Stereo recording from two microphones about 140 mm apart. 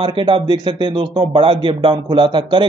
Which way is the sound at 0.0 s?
35° right (ahead or behind).